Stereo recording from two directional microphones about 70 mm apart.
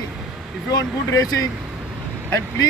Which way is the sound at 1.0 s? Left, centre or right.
Left.